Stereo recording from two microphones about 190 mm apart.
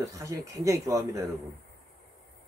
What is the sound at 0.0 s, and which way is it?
Speech, 20° right (ahead or behind).